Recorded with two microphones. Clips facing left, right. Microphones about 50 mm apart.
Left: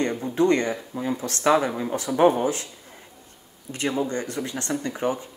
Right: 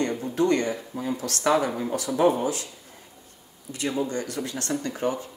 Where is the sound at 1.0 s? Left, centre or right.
Left.